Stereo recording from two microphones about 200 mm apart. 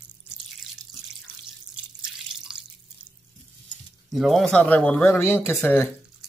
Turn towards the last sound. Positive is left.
turn(degrees=10)  # may be behind; listen again after turning